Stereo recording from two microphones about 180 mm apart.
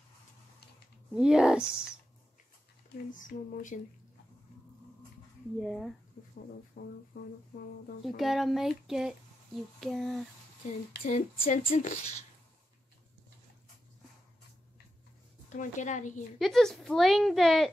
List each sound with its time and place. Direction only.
1.1 s a woman's voice: 5° right (ahead or behind)
3.1 s a woman's voice: 45° left (ahead or behind)
5.6 s a woman's voice: centre (ahead or behind)
6.8 s speech: 60° left (ahead or behind)
7.1 s a woman's voice: 40° left (ahead or behind)
8.0 s a woman's voice: centre (ahead or behind)
11.1 s a woman's voice: 45° left (ahead or behind)
15.5 s a woman's voice: 45° left (ahead or behind)
16.3 s a woman's voice: centre (ahead or behind)